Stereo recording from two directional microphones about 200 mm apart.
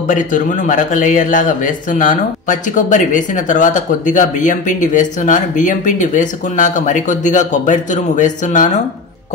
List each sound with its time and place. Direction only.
0.1 s a man's voice: 40° left (ahead or behind)